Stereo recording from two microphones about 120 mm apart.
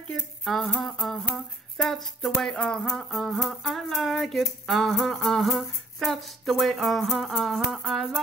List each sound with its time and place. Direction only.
0.1 s humming: 5° left (ahead or behind)